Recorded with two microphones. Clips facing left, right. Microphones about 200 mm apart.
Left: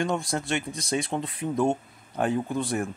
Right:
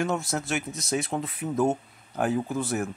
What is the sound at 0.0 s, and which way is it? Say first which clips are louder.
Speech: even; 5° right (ahead or behind).